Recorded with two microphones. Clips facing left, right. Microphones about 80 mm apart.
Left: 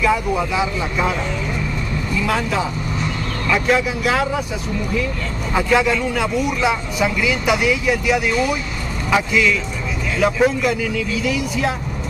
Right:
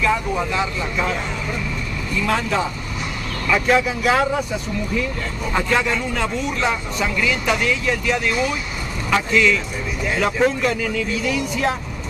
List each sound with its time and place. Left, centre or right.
0.0 s speech: centre
2.2 s speech: centre
5.5 s speech: centre